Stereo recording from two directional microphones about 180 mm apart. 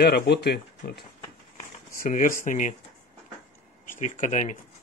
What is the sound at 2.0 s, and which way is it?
Speech, 45° left (ahead or behind).